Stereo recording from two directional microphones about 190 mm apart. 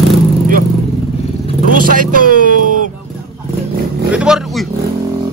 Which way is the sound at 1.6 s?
45° right (ahead or behind).